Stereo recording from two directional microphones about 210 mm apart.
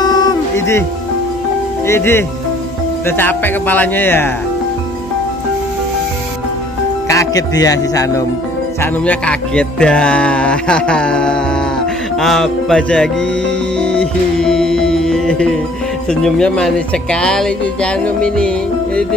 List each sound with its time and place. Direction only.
0.0 s music: 20° left (ahead or behind)
1.9 s speech: 10° left (ahead or behind)
7.1 s speech: 15° left (ahead or behind)
13.7 s music: 5° left (ahead or behind)
16.1 s speech: 5° left (ahead or behind)